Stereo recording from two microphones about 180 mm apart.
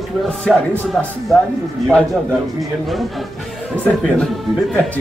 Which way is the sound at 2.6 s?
Centre (ahead or behind).